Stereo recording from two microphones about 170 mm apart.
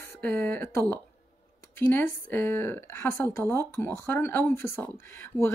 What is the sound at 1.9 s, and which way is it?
A woman's voice, 10° left (ahead or behind).